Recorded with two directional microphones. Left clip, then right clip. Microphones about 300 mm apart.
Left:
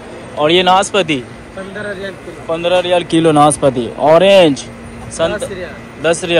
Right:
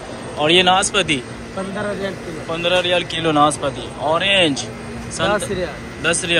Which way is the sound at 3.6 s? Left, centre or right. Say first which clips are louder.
Left 10 dB; left.